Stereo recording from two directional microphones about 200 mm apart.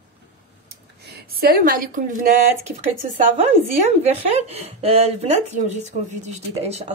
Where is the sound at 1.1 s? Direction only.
50° right (ahead or behind).